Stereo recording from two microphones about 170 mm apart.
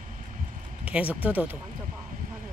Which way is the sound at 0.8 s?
10° right (ahead or behind).